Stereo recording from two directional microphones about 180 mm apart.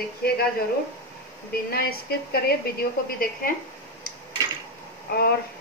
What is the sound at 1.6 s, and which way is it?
A woman's voice, 60° left (ahead or behind).